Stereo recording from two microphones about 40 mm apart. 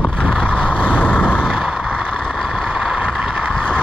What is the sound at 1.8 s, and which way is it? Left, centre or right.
Vehicle, right.